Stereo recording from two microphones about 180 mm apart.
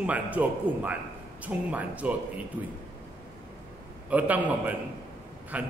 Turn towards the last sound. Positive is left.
turn(degrees=-10)  # may be behind; listen again after turning